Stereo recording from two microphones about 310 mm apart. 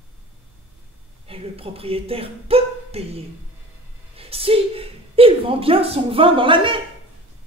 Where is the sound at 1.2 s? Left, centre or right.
Centre.